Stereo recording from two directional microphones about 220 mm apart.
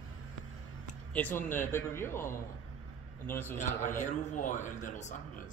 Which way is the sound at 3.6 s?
35° left (ahead or behind).